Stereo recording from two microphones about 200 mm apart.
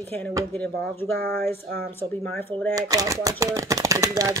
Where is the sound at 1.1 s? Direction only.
50° right (ahead or behind).